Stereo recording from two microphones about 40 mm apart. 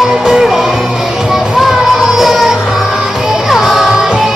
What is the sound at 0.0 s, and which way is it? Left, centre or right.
Music, centre.